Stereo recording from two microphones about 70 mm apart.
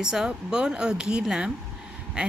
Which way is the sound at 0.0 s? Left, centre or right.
Centre.